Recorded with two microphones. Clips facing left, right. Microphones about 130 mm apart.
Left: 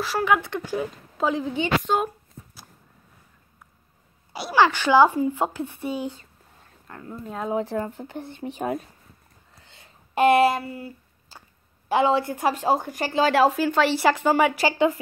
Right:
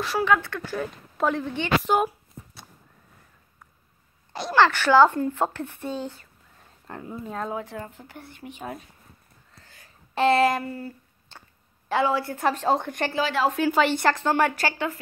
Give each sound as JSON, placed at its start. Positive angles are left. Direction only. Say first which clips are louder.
{"t": 0.0, "sound": "speech", "louder": "even", "side_deg": 0}
{"t": 0.3, "sound": "speech", "louder": "left 1 dB", "side_deg": 15}
{"t": 1.1, "sound": "speech", "louder": "left 1 dB", "side_deg": 5}
{"t": 1.8, "sound": "a sound", "louder": "right 1 dB", "side_deg": -5}
{"t": 4.3, "sound": "speech", "louder": "even", "side_deg": 10}
{"t": 7.1, "sound": "speech", "louder": "even", "side_deg": 0}
{"t": 7.5, "sound": "speech", "louder": "left 7 dB", "side_deg": 35}
{"t": 8.1, "sound": "speech", "louder": "left 8 dB", "side_deg": 25}
{"t": 9.6, "sound": "a sound", "louder": "even", "side_deg": 25}
{"t": 10.1, "sound": "speech", "louder": "left 2 dB", "side_deg": 15}
{"t": 11.9, "sound": "speech", "louder": "left 3 dB", "side_deg": 20}